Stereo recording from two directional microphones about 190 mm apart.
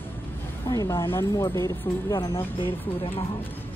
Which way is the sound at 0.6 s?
15° left (ahead or behind).